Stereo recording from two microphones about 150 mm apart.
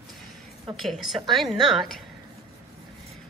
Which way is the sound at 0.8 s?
Centre (ahead or behind).